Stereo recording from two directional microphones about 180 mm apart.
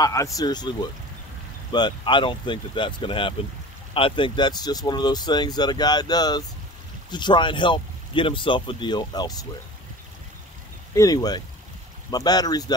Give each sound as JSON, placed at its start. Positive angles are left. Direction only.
{"t": 0.0, "sound": "speech", "side_deg": 20}
{"t": 11.0, "sound": "speech", "side_deg": 20}